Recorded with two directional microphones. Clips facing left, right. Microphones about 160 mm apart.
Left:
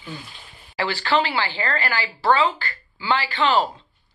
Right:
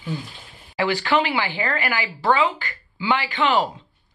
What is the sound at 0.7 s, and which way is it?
Speech, 15° right (ahead or behind).